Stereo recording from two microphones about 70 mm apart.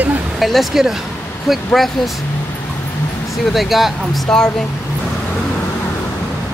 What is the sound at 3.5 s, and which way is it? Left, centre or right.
Speech, centre.